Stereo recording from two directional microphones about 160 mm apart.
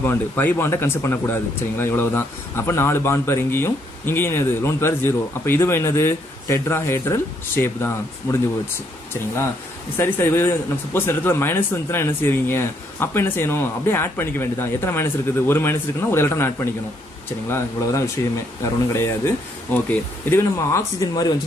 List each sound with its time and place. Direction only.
0.0 s speech: 15° left (ahead or behind)
9.9 s speech: 15° left (ahead or behind)